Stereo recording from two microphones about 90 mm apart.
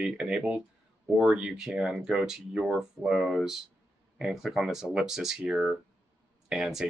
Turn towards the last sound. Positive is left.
turn(degrees=-5)  # may be behind; listen again after turning